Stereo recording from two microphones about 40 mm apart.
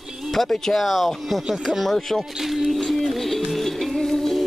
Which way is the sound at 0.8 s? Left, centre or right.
Centre.